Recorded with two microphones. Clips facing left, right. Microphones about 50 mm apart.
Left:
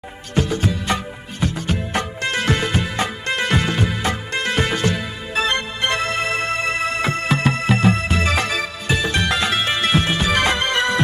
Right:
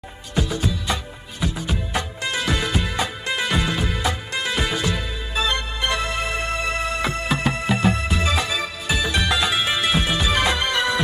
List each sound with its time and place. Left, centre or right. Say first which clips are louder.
0.4 s music: left 3 dB; left
9.0 s music: even; left